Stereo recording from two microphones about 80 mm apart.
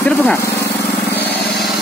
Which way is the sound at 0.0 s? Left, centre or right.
Centre.